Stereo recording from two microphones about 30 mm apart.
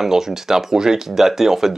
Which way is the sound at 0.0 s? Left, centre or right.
Centre.